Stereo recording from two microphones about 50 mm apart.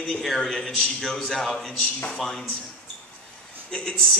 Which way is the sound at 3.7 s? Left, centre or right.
Centre.